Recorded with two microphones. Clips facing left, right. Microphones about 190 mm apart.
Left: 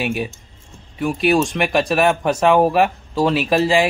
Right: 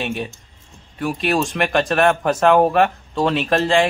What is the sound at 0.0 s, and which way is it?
Speech, 5° left (ahead or behind).